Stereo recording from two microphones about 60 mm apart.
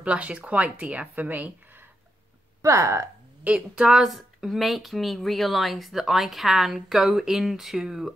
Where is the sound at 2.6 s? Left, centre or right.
Right.